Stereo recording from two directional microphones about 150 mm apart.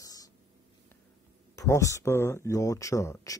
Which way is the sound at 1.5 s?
20° left (ahead or behind).